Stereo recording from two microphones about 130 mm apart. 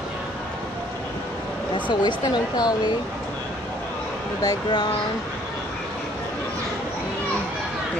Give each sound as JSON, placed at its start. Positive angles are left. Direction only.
{"t": 1.9, "sound": "speech", "side_deg": 35}
{"t": 4.4, "sound": "speech", "side_deg": 30}